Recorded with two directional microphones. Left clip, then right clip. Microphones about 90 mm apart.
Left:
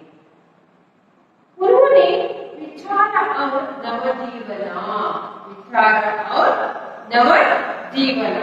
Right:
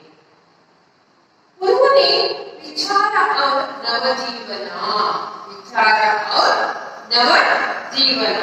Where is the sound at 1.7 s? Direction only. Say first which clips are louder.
Left 1 dB; 30° left (ahead or behind).